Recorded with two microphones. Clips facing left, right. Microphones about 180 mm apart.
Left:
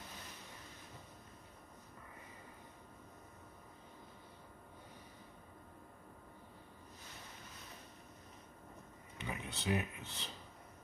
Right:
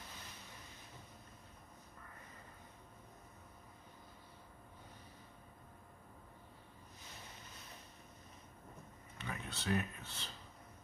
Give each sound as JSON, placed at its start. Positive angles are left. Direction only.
{"t": 9.2, "sound": "speech", "side_deg": 15}